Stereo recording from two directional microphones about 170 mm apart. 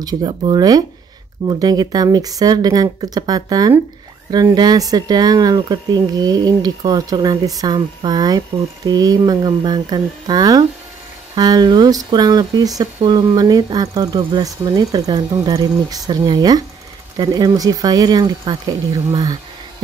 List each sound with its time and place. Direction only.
0.0 s speech: 25° right (ahead or behind)